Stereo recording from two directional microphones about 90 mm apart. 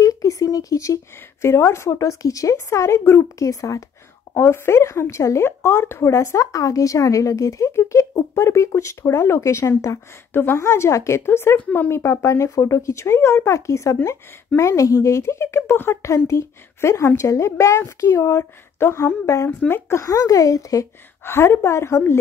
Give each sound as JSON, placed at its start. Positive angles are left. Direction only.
{"t": 0.0, "sound": "speech", "side_deg": 40}
{"t": 21.2, "sound": "a woman's voice", "side_deg": 25}